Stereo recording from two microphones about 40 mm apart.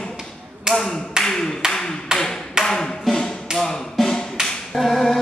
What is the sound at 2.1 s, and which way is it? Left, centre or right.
Tap, centre.